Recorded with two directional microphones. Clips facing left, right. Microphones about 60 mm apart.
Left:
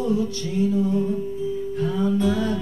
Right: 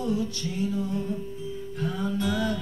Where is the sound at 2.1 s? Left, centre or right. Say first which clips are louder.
Left 4 dB; left.